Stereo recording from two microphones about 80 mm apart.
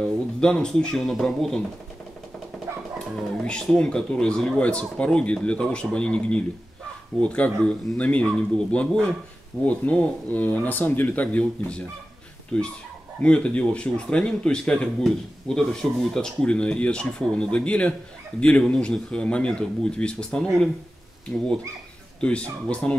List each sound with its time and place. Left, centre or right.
0.4 s speech: centre
3.3 s speech: centre
22.2 s speech: centre